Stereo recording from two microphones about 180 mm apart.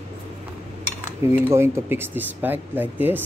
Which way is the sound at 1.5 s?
15° right (ahead or behind).